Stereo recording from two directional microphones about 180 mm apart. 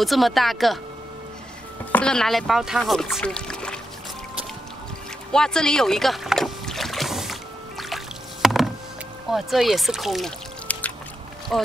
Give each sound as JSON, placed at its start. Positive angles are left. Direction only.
{"t": 0.0, "sound": "a woman's voice", "side_deg": 0}
{"t": 1.9, "sound": "speech", "side_deg": 5}
{"t": 5.3, "sound": "rowboat", "side_deg": 5}
{"t": 9.3, "sound": "a woman's voice", "side_deg": 0}